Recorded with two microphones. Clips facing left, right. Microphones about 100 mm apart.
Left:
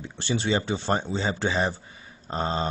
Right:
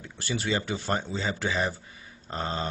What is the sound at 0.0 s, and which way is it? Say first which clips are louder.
Speech: left 4 dB; 25° left (ahead or behind).